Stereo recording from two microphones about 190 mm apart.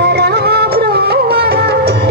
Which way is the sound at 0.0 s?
60° right (ahead or behind).